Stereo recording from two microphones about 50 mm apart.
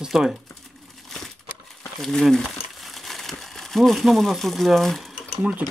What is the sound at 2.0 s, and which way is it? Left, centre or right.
Speech, centre.